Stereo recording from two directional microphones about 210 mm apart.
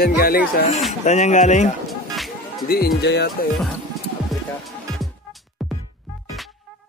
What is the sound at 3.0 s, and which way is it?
Speech, 50° left (ahead or behind).